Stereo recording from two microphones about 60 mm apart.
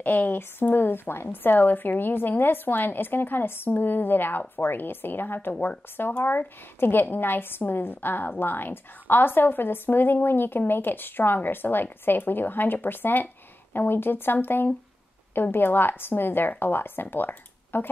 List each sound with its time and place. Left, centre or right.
0.0 s a woman's voice: left